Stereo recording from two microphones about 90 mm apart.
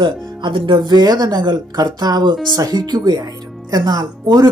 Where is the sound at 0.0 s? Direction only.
65° right (ahead or behind).